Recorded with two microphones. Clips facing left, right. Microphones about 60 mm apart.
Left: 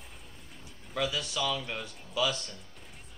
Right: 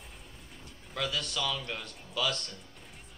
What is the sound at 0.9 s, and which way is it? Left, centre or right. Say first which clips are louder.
A man's voice: left 2 dB; centre.